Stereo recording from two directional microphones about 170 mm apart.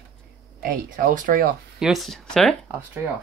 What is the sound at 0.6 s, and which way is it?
Speech, 55° right (ahead or behind).